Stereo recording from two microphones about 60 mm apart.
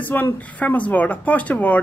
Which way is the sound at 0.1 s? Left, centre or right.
Left.